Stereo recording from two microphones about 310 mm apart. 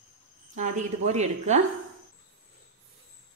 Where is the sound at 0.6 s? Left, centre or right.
Right.